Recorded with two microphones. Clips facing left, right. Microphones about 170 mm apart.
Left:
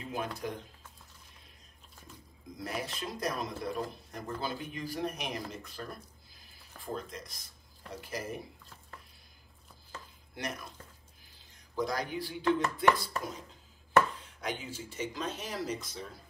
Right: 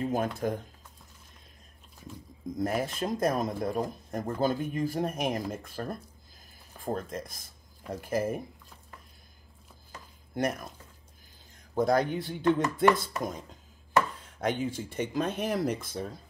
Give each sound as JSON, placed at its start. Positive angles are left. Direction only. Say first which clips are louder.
{"t": 0.0, "sound": "speech", "louder": "right 8 dB", "side_deg": -45}
{"t": 2.5, "sound": "speech", "louder": "right 8 dB", "side_deg": -50}
{"t": 10.3, "sound": "speech", "louder": "right 9 dB", "side_deg": -50}
{"t": 11.7, "sound": "speech", "louder": "right 8 dB", "side_deg": -55}
{"t": 14.4, "sound": "speech", "louder": "right 8 dB", "side_deg": -55}